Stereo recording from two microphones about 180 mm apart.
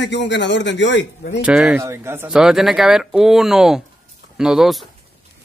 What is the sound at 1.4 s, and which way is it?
Speech, 5° right (ahead or behind).